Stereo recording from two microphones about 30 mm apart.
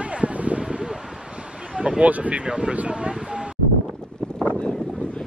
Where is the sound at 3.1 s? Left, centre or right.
Right.